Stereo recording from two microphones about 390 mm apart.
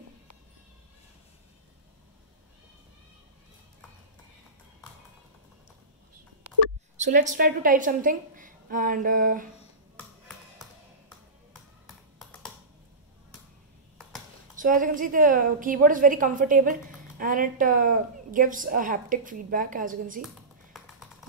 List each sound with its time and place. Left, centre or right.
7.0 s a woman's voice: centre
9.9 s music: centre
12.2 s typing: centre
14.6 s a woman's voice: right